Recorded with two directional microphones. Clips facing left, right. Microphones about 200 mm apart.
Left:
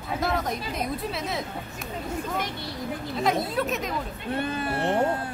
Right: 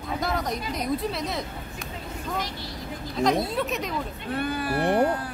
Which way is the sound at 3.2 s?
Centre (ahead or behind).